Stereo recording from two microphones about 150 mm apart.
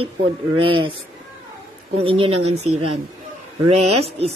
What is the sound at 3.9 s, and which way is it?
Speech, 45° right (ahead or behind).